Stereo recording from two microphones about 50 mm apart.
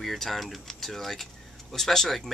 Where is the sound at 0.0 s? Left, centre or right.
Centre.